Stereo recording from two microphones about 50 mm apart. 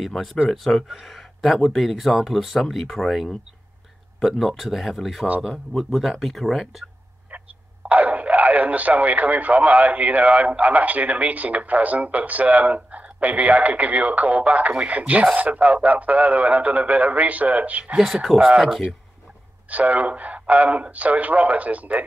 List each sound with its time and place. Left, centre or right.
0.0 s speech: centre
7.9 s speech: right
17.9 s speech: centre
19.7 s speech: right